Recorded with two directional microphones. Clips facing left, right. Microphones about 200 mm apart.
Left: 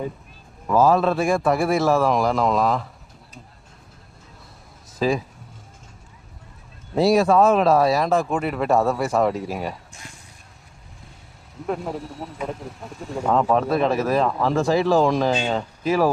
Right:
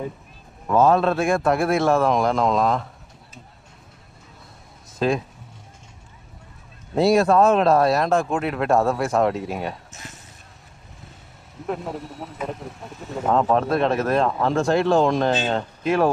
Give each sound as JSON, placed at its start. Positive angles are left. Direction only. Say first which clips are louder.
{"t": 0.7, "sound": "speech", "louder": "even", "side_deg": 0}
{"t": 4.9, "sound": "speech", "louder": "even", "side_deg": 0}
{"t": 7.0, "sound": "speech", "louder": "even", "side_deg": 0}
{"t": 11.6, "sound": "speech", "louder": "left 1 dB", "side_deg": 0}